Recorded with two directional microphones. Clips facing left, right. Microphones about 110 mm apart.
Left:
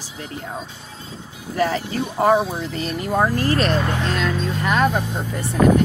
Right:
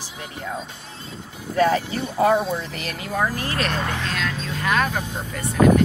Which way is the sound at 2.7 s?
35° left (ahead or behind).